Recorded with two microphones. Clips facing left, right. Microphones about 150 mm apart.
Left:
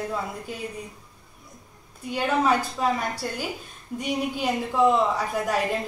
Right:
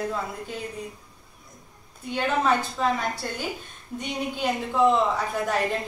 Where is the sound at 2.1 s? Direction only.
10° left (ahead or behind).